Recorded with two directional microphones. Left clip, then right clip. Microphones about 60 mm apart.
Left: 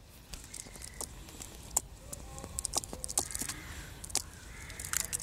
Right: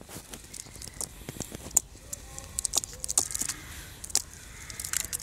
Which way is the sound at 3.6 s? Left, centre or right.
Centre.